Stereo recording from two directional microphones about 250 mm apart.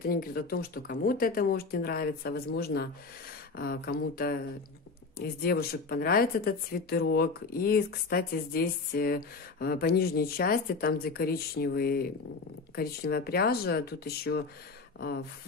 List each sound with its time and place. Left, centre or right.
0.0 s speech: left